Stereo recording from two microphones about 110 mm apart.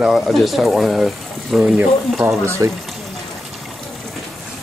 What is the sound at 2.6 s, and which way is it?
Speech, 30° right (ahead or behind).